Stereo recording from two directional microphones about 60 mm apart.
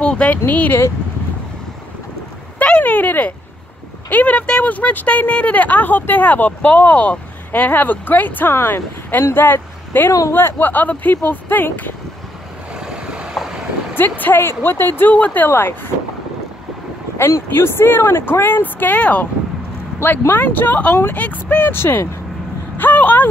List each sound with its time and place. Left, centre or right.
0.0 s speech: centre
0.5 s speech: left
2.6 s a sound: left
4.1 s speech: left
8.5 s speech: left
12.7 s vehicle: centre
13.9 s speech: left
17.5 s speech: left
20.0 s speech: left
21.7 s speech: left
22.8 s vehicle: left